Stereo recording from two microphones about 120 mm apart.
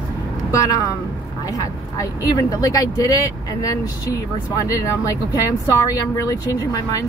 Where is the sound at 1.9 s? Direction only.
30° left (ahead or behind).